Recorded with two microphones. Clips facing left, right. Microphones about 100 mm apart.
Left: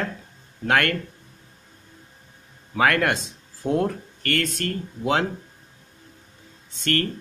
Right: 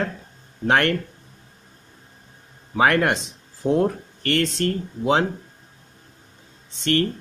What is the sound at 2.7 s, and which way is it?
Speech, 20° right (ahead or behind).